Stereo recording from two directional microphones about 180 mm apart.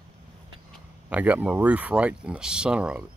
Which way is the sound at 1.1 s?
10° right (ahead or behind).